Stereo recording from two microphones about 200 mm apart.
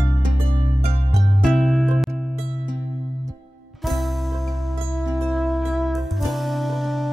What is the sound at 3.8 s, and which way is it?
Music, centre (ahead or behind).